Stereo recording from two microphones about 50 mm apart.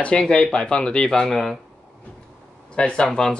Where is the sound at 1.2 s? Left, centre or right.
Centre.